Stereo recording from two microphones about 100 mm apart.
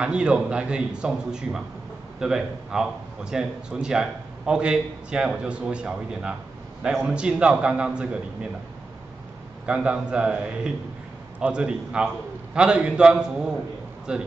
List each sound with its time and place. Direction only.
0.0 s a man's voice: 10° right (ahead or behind)
9.7 s a man's voice: 10° right (ahead or behind)